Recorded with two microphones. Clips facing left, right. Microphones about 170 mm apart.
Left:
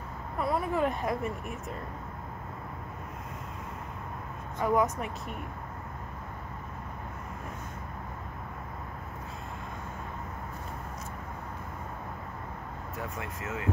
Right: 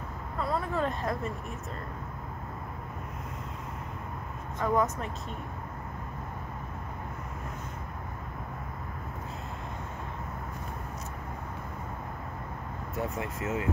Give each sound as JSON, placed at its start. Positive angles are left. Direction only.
{"t": 0.4, "sound": "speech", "side_deg": 15}
{"t": 4.6, "sound": "speech", "side_deg": 15}
{"t": 13.2, "sound": "speech", "side_deg": -25}